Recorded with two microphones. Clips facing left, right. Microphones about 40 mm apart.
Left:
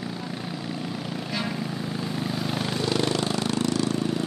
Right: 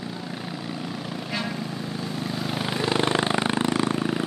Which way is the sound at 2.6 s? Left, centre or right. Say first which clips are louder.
Right 3 dB; right.